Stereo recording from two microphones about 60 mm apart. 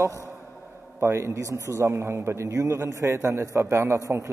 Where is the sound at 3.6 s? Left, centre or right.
Right.